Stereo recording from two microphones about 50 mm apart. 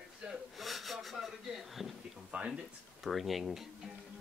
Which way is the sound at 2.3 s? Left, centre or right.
Right.